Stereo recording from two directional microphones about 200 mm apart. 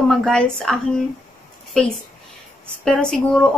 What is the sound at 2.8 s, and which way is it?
Speech, 5° left (ahead or behind).